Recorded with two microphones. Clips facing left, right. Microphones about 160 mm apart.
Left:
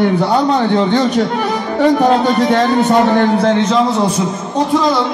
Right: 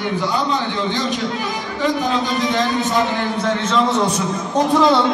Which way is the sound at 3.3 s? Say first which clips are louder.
Left 6 dB; 35° left (ahead or behind).